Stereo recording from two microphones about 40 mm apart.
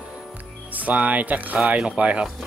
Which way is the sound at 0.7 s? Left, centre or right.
Right.